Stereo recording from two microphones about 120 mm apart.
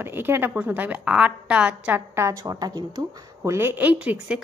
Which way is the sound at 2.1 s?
25° right (ahead or behind).